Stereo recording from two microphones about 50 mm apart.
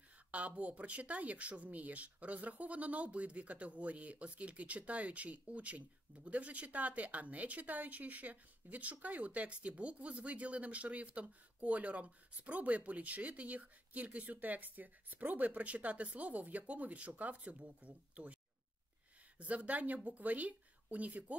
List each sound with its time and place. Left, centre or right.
0.3 s a woman's voice: right